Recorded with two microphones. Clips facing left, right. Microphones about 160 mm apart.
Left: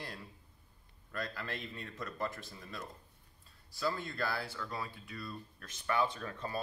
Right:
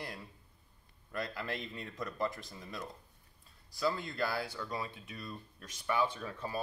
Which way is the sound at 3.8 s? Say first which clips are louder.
Right 2 dB; 20° right (ahead or behind).